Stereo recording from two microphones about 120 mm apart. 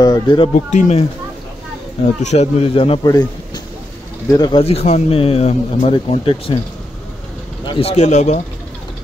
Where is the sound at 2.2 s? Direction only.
65° left (ahead or behind); by 3.0 s 50° left (ahead or behind).